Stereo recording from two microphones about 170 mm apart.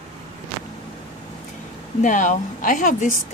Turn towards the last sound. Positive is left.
turn(degrees=50)  # may be behind; listen again after turning